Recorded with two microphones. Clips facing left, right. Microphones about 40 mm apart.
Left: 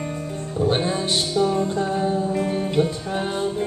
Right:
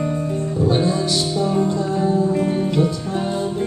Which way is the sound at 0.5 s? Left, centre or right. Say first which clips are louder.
Right 2 dB; left.